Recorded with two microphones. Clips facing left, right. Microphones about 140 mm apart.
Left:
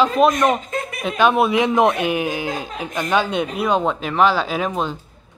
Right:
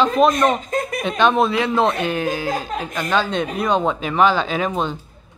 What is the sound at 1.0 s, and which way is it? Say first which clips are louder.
Speech: left 1 dB; 5° left (ahead or behind).